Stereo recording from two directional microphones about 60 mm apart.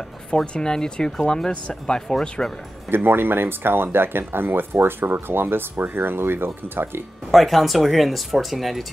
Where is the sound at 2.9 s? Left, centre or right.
Right.